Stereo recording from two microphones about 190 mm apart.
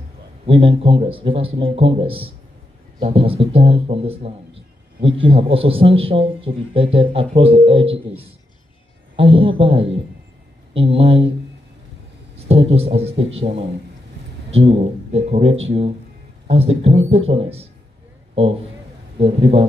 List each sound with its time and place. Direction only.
0.5 s a man's voice: 30° right (ahead or behind)
9.1 s a man's voice: 30° right (ahead or behind)
12.4 s a man's voice: 30° right (ahead or behind)